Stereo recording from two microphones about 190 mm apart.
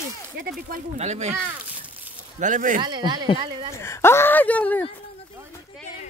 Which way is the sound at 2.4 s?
40° right (ahead or behind).